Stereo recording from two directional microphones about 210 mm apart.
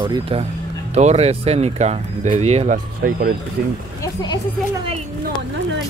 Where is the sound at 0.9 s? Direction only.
30° right (ahead or behind).